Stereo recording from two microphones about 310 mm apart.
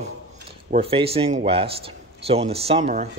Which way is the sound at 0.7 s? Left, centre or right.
Centre.